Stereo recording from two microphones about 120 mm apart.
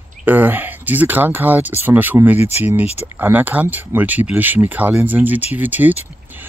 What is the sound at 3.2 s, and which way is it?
Speech, 15° right (ahead or behind).